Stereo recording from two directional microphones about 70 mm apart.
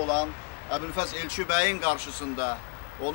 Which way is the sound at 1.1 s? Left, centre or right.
Left.